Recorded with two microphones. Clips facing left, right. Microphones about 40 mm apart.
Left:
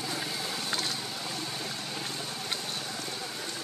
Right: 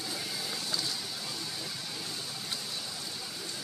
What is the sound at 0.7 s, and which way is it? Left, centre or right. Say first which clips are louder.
Vehicle: left 3 dB; left.